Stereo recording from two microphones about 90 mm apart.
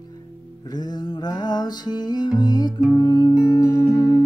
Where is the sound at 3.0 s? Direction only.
60° left (ahead or behind).